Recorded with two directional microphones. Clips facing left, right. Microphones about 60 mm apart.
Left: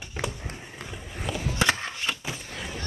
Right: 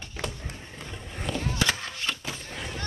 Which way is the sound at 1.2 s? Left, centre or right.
Centre.